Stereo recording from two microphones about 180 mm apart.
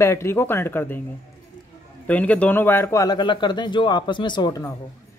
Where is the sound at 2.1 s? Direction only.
10° left (ahead or behind).